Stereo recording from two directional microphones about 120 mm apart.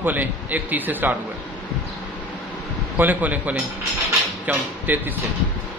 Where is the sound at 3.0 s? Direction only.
15° right (ahead or behind).